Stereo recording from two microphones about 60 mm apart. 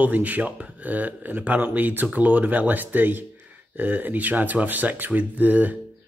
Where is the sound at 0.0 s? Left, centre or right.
Right.